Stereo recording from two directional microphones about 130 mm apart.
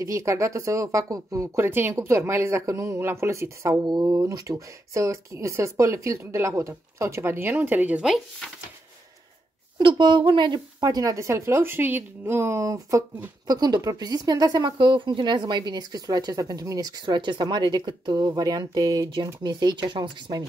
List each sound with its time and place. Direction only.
0.0 s speech: 25° right (ahead or behind); by 8.5 s 5° right (ahead or behind)
9.8 s speech: 35° right (ahead or behind)